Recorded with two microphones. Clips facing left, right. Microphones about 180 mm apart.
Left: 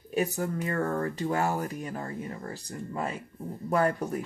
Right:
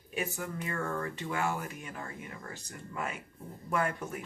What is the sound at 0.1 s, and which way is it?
Speech, 40° left (ahead or behind).